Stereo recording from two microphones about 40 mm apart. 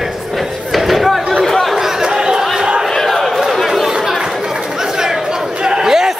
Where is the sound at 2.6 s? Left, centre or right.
Centre.